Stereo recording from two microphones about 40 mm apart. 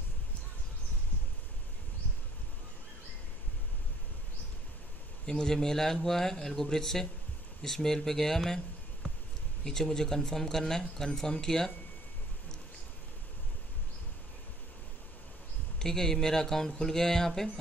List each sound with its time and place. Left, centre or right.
5.2 s a man's voice: centre
9.7 s a man's voice: centre
15.8 s a man's voice: centre